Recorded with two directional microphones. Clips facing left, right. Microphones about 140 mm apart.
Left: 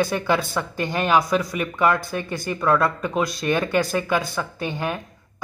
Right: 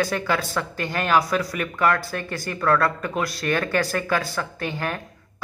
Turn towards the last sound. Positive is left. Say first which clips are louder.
# left 2 dB
turn(degrees=20)  # may be behind; listen again after turning